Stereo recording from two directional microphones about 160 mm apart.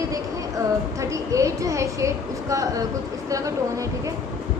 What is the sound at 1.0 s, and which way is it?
A woman's voice, 20° right (ahead or behind).